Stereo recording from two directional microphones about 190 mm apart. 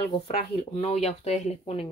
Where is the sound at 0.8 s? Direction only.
35° left (ahead or behind).